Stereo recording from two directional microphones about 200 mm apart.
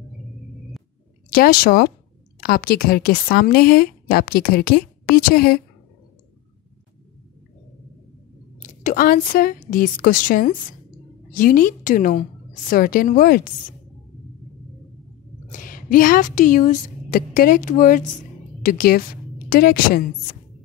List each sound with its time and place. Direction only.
1.3 s speech: 45° left (ahead or behind)
8.6 s a woman's voice: 45° left (ahead or behind)
15.4 s a woman's voice: 40° left (ahead or behind)